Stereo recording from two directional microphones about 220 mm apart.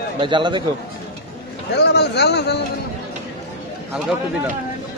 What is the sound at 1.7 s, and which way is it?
Speech, 50° left (ahead or behind).